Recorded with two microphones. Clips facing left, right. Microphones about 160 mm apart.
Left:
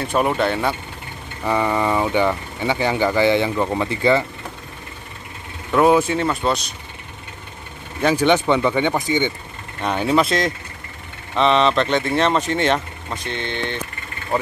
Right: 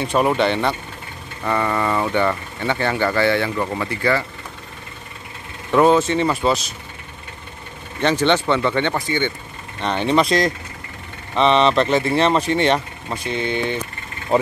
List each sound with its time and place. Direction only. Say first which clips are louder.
0.0 s speech: right 1 dB; centre (ahead or behind); by 4.2 s 20° left (ahead or behind)
5.7 s speech: right 1 dB; centre (ahead or behind)
8.0 s speech: left 1 dB; 10° left (ahead or behind); by 13.7 s 5° right (ahead or behind)
14.3 s speech: right 5 dB; 25° right (ahead or behind)